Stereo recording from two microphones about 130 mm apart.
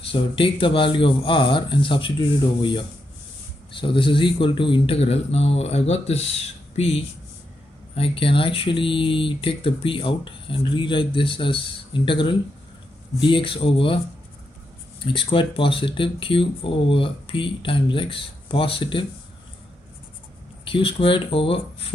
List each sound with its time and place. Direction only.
0.0 s speech: 45° left (ahead or behind)
3.8 s speech: 40° left (ahead or behind)
7.9 s speech: 45° left (ahead or behind)
15.3 s speech: 40° left (ahead or behind)
20.6 s speech: 40° left (ahead or behind)